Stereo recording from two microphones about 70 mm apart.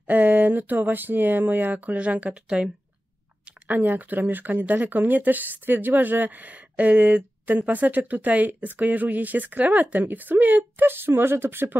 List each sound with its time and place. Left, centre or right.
0.0 s speech: right